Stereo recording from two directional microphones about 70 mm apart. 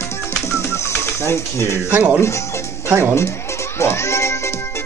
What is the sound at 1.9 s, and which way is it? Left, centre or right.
Speech, right.